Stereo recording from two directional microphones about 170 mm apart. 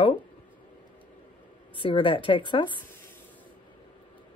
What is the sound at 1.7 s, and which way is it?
Speech, 30° left (ahead or behind).